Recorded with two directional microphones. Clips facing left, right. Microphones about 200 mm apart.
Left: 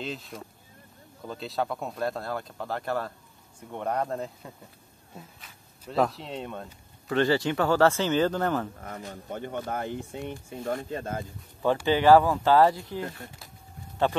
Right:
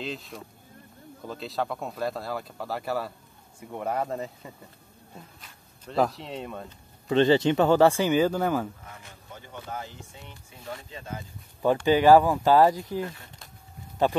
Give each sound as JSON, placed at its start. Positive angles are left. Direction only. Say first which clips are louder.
{"t": 0.0, "sound": "speech", "louder": "even", "side_deg": 0}
{"t": 7.1, "sound": "speech", "louder": "right 4 dB", "side_deg": -20}
{"t": 8.8, "sound": "speech", "louder": "left 9 dB", "side_deg": 40}
{"t": 9.3, "sound": "speech", "louder": "left 6 dB", "side_deg": 60}
{"t": 11.6, "sound": "speech", "louder": "right 2 dB", "side_deg": -15}